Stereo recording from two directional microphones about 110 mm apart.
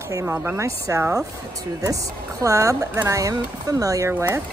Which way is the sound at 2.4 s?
30° right (ahead or behind).